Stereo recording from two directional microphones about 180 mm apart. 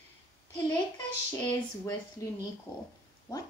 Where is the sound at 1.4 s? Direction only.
20° left (ahead or behind).